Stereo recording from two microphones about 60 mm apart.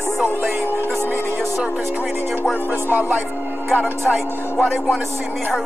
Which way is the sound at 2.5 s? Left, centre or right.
Right.